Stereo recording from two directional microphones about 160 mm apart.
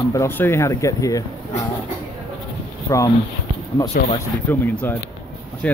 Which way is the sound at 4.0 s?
55° left (ahead or behind).